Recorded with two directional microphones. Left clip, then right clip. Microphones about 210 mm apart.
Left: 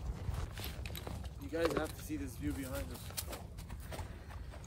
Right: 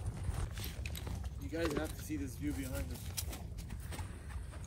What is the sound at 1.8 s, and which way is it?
Speech, 15° left (ahead or behind).